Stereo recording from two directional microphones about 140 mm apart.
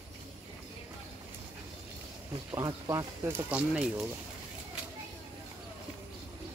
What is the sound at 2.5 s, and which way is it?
Speech, 25° right (ahead or behind).